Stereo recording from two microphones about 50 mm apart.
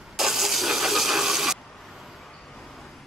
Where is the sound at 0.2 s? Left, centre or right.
Centre.